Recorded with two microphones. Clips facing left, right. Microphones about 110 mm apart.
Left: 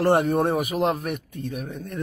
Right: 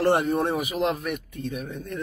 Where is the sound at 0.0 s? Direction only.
50° left (ahead or behind).